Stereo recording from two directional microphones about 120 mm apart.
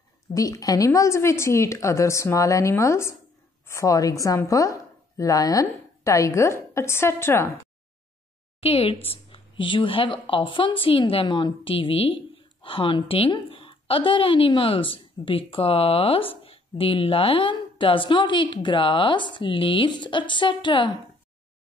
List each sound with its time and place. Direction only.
0.3 s a woman's voice: 30° left (ahead or behind)
8.5 s a woman's voice: 55° left (ahead or behind)